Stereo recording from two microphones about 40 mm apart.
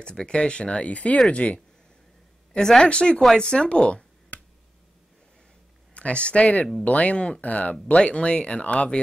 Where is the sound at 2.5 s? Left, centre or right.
Centre.